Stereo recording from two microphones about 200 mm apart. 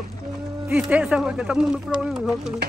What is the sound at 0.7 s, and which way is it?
Speech, 5° right (ahead or behind).